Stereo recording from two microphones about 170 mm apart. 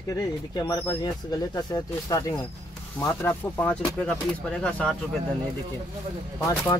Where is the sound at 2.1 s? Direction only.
20° left (ahead or behind).